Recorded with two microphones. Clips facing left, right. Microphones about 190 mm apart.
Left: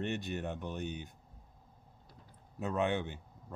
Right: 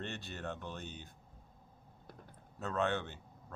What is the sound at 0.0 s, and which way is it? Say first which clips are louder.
Speech: left 6 dB; 15° left (ahead or behind).